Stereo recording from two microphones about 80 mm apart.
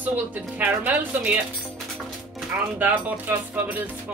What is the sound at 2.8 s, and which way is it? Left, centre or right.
A woman's voice, right.